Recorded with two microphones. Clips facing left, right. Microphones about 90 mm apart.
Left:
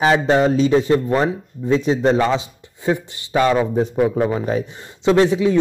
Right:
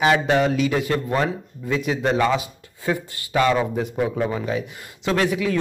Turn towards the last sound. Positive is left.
turn(degrees=25)  # may be behind; listen again after turning